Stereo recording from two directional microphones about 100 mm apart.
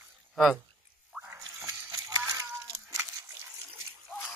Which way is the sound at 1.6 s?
40° right (ahead or behind).